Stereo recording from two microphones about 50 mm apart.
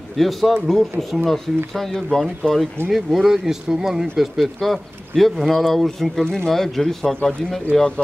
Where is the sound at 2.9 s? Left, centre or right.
Centre.